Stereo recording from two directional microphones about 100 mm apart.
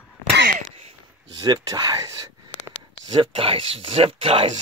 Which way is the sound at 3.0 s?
55° right (ahead or behind).